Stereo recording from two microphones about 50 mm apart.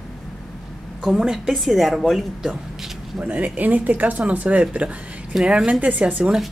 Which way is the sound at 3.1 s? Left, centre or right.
Right.